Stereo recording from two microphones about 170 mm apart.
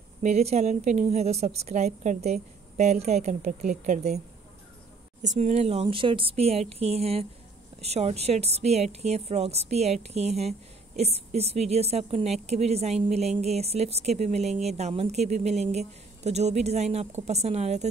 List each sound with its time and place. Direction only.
0.2 s speech: 40° right (ahead or behind)
5.2 s speech: 40° right (ahead or behind)